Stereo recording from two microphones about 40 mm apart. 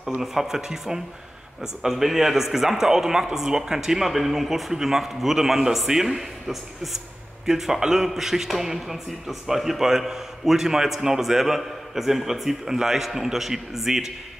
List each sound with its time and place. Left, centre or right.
0.2 s speech: centre